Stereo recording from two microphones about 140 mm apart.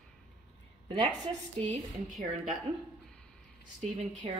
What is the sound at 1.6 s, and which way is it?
Speech, 55° right (ahead or behind).